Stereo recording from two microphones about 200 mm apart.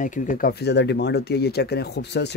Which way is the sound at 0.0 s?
40° left (ahead or behind).